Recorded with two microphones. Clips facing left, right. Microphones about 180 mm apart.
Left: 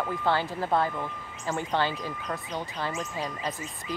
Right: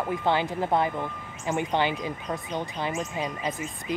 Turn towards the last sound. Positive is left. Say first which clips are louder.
# right 4 dB
turn(degrees=-20)  # may be behind; listen again after turning